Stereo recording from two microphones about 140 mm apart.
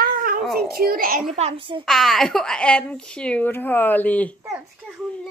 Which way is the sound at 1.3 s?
45° right (ahead or behind).